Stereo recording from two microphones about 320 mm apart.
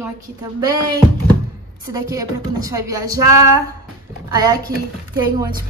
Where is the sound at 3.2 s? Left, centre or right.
Right.